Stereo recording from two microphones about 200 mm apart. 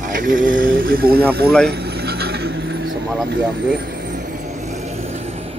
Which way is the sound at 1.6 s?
50° right (ahead or behind).